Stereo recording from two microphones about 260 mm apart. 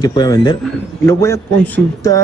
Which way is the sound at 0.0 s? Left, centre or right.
Centre.